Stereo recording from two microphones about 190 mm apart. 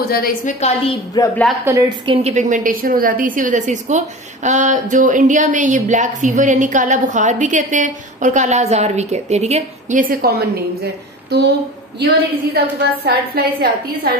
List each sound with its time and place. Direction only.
0.1 s a woman's voice: 45° left (ahead or behind)
1.2 s a woman's voice: 20° left (ahead or behind)
1.6 s a woman's voice: 15° right (ahead or behind)
2.0 s a woman's voice: 30° right (ahead or behind); by 11.5 s 65° right (ahead or behind)
13.0 s a woman's voice: 55° right (ahead or behind)